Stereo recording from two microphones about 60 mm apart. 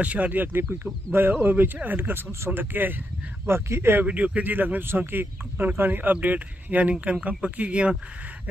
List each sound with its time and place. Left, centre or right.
0.0 s speech: right
3.4 s speech: right
4.0 s speech: right